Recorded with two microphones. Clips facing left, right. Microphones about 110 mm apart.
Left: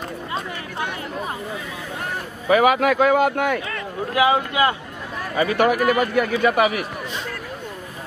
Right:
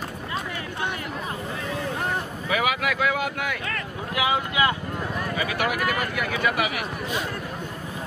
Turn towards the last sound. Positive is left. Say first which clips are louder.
# left 2 dB
turn(degrees=35)  # may be behind; listen again after turning